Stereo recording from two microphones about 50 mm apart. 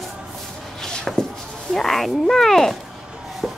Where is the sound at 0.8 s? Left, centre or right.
Centre.